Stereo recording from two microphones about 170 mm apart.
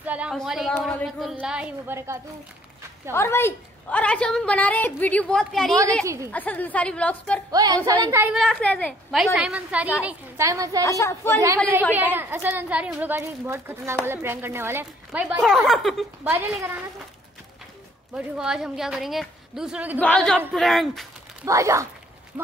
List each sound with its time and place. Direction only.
0.0 s a sound: 10° right (ahead or behind)
0.4 s a woman's voice: centre (ahead or behind)
3.1 s a woman's voice: 15° left (ahead or behind)
6.0 s a woman's voice: 20° right (ahead or behind)
6.3 s a woman's voice: 10° left (ahead or behind)
7.5 s a woman's voice: 20° right (ahead or behind)
8.3 s a woman's voice: centre (ahead or behind); by 10.9 s 20° right (ahead or behind)
10.9 s a woman's voice: 15° left (ahead or behind)
11.9 s a woman's voice: 10° right (ahead or behind)
15.4 s a woman's voice: centre (ahead or behind)
18.1 s a woman's voice: 5° right (ahead or behind)
20.0 s a woman's voice: 5° left (ahead or behind)
21.5 s a woman's voice: 20° right (ahead or behind)